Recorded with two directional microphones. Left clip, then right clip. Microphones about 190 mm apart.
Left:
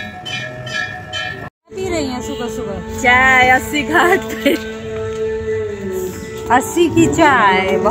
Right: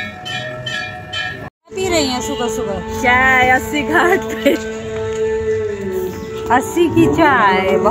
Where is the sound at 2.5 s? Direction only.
Centre (ahead or behind).